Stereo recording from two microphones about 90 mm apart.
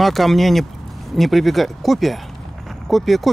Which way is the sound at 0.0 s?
Centre (ahead or behind).